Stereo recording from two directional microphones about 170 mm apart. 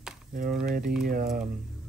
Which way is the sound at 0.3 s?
55° right (ahead or behind).